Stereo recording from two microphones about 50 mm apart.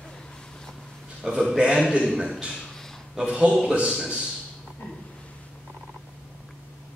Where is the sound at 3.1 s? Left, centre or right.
Centre.